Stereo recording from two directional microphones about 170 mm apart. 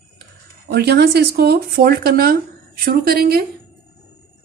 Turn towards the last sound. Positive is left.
turn(degrees=-60)  # may be behind; listen again after turning